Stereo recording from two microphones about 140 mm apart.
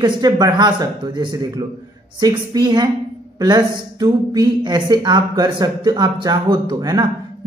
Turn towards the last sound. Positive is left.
turn(degrees=-30)  # may be behind; listen again after turning